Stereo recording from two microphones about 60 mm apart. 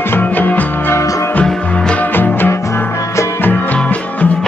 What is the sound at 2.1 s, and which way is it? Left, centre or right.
Music, left.